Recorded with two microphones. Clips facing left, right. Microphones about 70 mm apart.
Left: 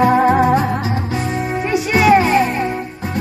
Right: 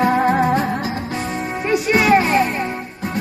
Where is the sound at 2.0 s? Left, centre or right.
Centre.